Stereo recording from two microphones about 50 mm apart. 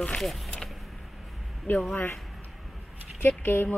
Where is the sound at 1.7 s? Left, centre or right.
Left.